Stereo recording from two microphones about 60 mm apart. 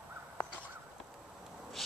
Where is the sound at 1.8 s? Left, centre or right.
Centre.